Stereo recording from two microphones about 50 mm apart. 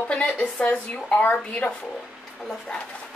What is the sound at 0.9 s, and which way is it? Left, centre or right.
Speech, left.